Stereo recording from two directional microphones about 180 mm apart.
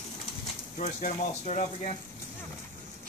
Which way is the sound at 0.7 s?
45° left (ahead or behind).